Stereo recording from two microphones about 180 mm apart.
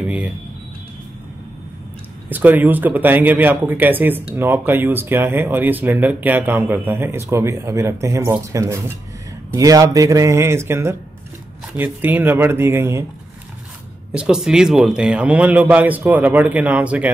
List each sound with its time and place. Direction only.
2.2 s speech: 10° right (ahead or behind)
14.1 s speech: 5° right (ahead or behind)